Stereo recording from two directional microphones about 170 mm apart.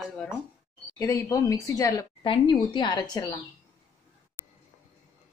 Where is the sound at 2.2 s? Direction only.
30° left (ahead or behind).